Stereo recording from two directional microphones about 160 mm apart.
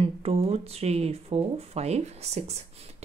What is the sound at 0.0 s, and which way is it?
Speech, 40° right (ahead or behind).